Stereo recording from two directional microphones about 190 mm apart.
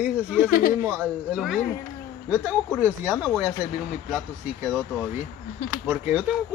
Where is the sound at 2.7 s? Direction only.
10° right (ahead or behind).